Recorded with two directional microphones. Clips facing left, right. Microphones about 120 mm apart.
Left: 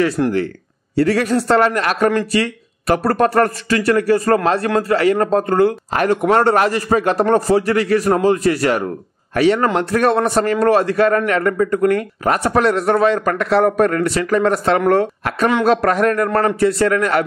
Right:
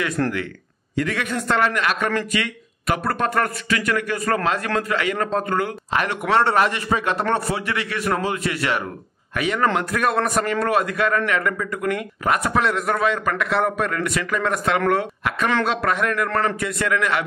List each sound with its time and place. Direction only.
0.2 s speech: 15° left (ahead or behind)
0.9 s a man's voice: 35° left (ahead or behind)